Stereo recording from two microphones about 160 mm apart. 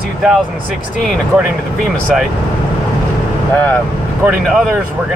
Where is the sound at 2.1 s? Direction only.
5° right (ahead or behind).